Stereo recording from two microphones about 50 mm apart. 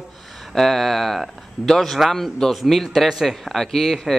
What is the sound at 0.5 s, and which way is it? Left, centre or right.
A man's voice, centre.